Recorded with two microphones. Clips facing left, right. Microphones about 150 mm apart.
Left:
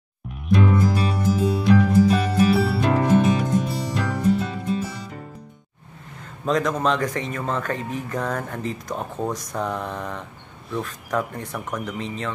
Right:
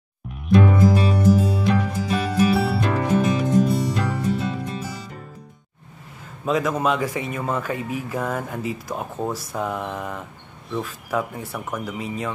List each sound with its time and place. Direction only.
0.3 s music: centre (ahead or behind)
6.4 s speech: 5° right (ahead or behind)